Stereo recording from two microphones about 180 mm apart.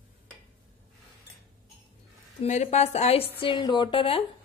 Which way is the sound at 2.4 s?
40° left (ahead or behind).